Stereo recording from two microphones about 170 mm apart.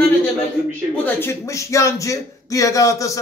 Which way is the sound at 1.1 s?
15° left (ahead or behind).